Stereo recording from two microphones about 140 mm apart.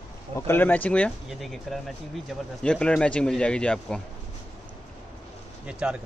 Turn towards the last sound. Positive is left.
turn(degrees=-5)  # may be behind; listen again after turning